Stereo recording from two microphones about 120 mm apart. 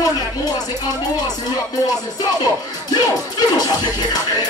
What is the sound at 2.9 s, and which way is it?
Speech, 35° left (ahead or behind).